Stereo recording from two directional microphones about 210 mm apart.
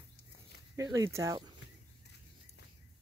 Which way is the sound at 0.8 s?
15° right (ahead or behind).